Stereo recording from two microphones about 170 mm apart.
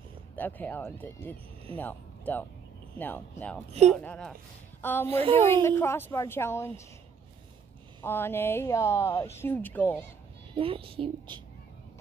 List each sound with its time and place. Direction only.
0.4 s speech: 10° left (ahead or behind)
5.1 s a woman's voice: 35° right (ahead or behind)
5.5 s speech: 15° left (ahead or behind)
8.0 s speech: 15° left (ahead or behind)
10.5 s a woman's voice: 30° right (ahead or behind)